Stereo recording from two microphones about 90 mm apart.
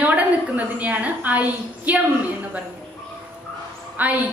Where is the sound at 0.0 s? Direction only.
15° right (ahead or behind).